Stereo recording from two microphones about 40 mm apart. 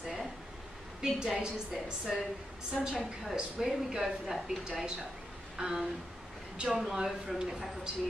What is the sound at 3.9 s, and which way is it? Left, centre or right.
Speech, centre.